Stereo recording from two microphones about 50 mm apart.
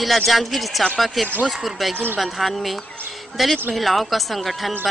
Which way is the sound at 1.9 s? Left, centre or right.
Right.